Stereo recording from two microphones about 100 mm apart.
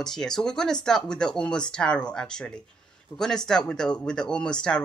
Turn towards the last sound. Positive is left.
turn(degrees=10)  # may be behind; listen again after turning